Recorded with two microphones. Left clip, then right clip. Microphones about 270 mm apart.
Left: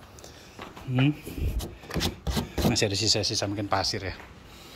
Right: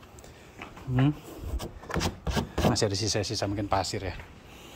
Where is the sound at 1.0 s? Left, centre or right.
Centre.